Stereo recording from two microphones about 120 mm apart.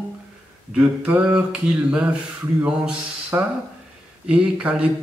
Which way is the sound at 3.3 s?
20° right (ahead or behind).